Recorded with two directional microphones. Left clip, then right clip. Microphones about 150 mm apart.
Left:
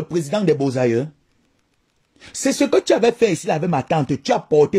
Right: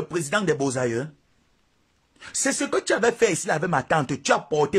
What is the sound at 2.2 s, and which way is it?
Speech, 15° left (ahead or behind).